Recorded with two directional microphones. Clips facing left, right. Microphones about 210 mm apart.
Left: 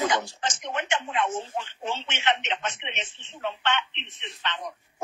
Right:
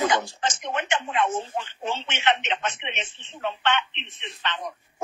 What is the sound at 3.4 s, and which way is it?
Speech, 90° right.